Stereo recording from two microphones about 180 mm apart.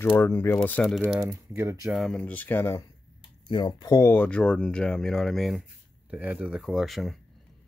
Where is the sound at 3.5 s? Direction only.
25° left (ahead or behind); by 7.2 s centre (ahead or behind).